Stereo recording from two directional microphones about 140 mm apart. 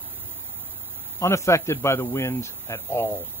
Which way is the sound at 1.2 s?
20° left (ahead or behind).